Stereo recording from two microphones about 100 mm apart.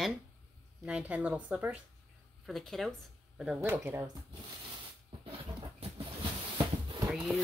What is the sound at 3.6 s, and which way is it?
Speech, 20° right (ahead or behind).